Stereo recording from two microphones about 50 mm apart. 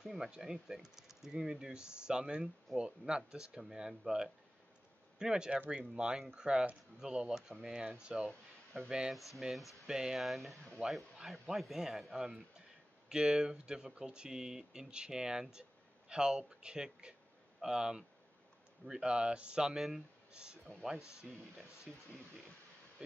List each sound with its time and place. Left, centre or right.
0.0 s speech: centre
9.4 s speech: centre
10.2 s speech: centre; by 19.7 s right
19.7 s speech: centre
20.7 s speech: left
21.9 s speech: centre